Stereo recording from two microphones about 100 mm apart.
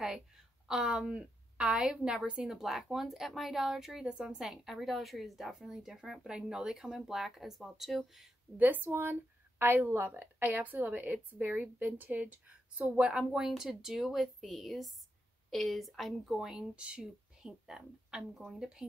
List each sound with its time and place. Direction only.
0.7 s a woman's voice: 10° right (ahead or behind)
8.5 s a woman's voice: 20° right (ahead or behind)